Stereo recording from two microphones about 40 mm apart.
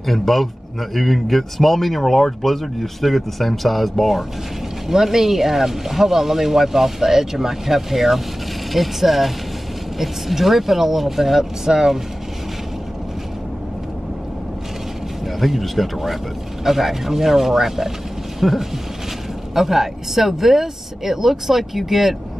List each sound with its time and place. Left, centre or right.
0.0 s speech: centre
4.8 s speech: centre
15.2 s speech: centre